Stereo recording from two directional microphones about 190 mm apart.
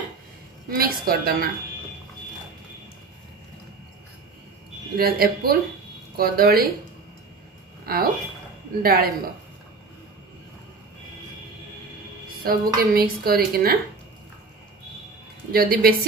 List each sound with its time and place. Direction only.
0.7 s a woman's voice: 50° right (ahead or behind)
4.9 s a woman's voice: 55° right (ahead or behind)
7.8 s a woman's voice: 50° right (ahead or behind)
12.4 s a woman's voice: 55° right (ahead or behind)
15.5 s a woman's voice: 50° right (ahead or behind)